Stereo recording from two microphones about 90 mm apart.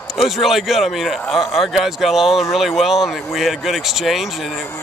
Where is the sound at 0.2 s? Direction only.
5° right (ahead or behind).